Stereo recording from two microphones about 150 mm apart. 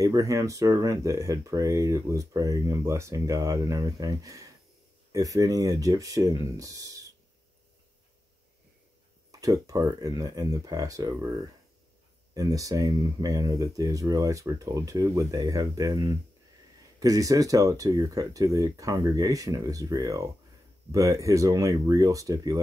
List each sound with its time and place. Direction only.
0.0 s speech: 20° right (ahead or behind)
9.3 s speech: 20° right (ahead or behind)